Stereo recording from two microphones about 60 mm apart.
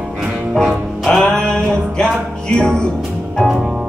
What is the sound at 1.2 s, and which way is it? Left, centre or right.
Music, centre.